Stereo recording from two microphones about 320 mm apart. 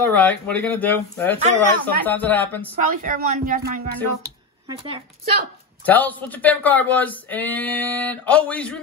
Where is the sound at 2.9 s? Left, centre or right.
Right.